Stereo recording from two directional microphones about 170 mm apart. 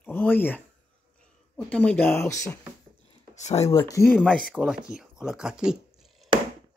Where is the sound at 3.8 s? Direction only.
20° left (ahead or behind).